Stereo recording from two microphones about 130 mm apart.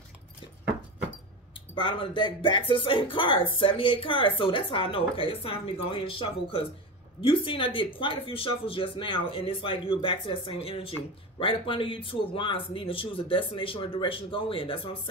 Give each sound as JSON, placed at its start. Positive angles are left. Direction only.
{"t": 1.8, "sound": "speech", "side_deg": 40}